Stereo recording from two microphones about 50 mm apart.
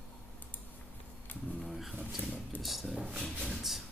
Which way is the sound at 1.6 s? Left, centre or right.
Centre.